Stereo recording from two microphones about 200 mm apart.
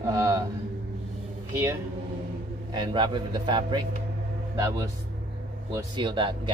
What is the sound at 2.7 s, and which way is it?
A man's voice, 20° right (ahead or behind).